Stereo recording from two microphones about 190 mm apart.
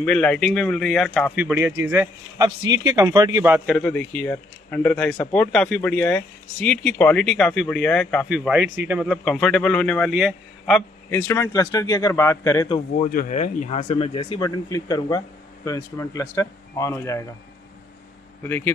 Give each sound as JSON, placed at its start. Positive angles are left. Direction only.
{"t": 0.0, "sound": "speech", "side_deg": 5}
{"t": 1.3, "sound": "a man's voice", "side_deg": -10}
{"t": 3.7, "sound": "speech", "side_deg": 10}
{"t": 11.1, "sound": "speech", "side_deg": 15}
{"t": 12.9, "sound": "speech", "side_deg": 45}